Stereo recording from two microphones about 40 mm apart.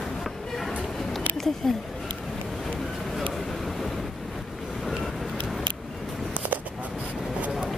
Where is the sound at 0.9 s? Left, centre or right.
Centre.